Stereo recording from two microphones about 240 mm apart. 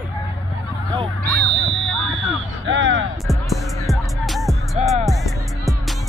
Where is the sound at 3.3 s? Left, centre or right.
Centre.